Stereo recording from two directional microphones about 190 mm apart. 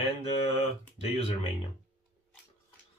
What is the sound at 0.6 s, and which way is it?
Speech, 30° left (ahead or behind).